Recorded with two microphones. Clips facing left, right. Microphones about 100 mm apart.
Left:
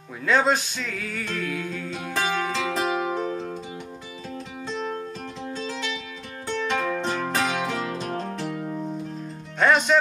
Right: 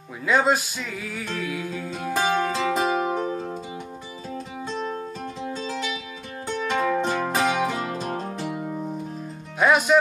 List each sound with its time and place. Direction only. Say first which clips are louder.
0.2 s music: right 1 dB; 5° right (ahead or behind)
2.9 s music: right 2 dB; 35° right (ahead or behind)
3.2 s music: right 1 dB; 5° right (ahead or behind)
5.5 s music: even; 5° right (ahead or behind)